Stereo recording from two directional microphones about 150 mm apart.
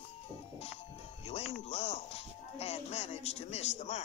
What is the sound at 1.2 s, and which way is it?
Music, 45° left (ahead or behind).